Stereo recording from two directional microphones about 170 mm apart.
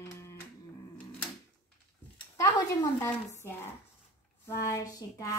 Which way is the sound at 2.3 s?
20° left (ahead or behind).